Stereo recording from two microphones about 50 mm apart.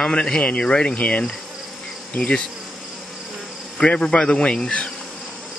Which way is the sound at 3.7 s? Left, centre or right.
Centre.